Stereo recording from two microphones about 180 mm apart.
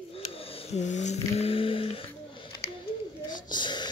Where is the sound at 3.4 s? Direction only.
25° left (ahead or behind).